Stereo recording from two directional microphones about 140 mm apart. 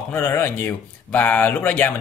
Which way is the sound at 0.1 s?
15° left (ahead or behind).